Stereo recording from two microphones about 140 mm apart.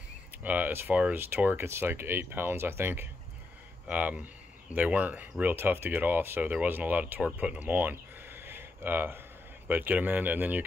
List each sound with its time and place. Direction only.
0.4 s speech: 10° right (ahead or behind)